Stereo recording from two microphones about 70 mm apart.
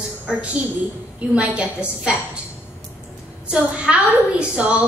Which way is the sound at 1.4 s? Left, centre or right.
Centre.